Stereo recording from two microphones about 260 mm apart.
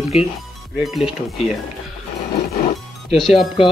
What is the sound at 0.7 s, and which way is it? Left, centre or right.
Speech, centre.